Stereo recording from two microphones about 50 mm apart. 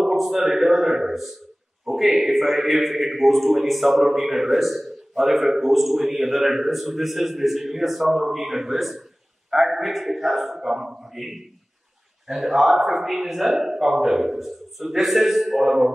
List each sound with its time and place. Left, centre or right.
0.0 s a man's voice: centre